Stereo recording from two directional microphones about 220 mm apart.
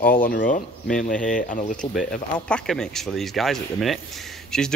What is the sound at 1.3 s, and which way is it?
Speech, 35° left (ahead or behind).